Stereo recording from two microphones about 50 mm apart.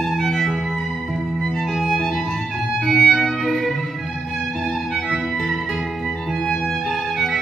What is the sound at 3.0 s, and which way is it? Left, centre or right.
Music, centre.